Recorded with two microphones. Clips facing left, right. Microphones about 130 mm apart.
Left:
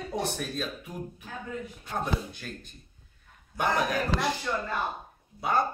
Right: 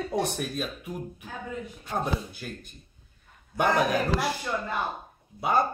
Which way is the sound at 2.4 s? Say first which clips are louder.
Right 2 dB; 10° right (ahead or behind).